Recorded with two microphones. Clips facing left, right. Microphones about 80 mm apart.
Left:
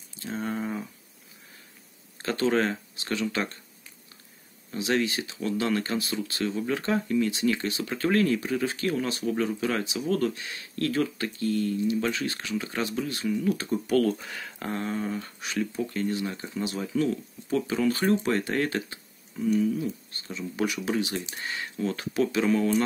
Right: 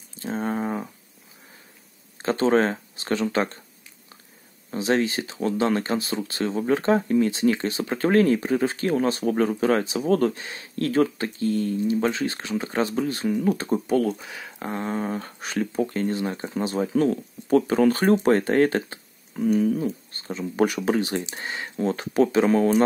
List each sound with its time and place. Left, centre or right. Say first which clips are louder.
0.1 s a sound: right 5 dB; right
2.1 s speech: right 5 dB; right
4.6 s speech: right 4 dB; right
13.9 s speech: left 2 dB; centre
15.0 s speech: right 3 dB; right
19.3 s speech: right 4 dB; right